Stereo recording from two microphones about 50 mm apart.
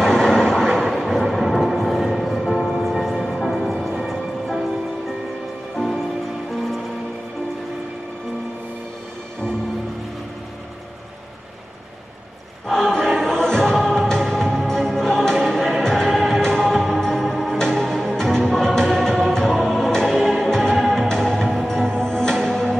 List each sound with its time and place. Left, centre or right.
0.0 s vehicle: centre
1.2 s music: centre
5.8 s music: centre
12.6 s music: centre